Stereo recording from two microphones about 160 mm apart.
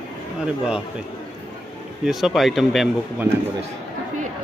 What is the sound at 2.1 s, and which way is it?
Speech, centre (ahead or behind).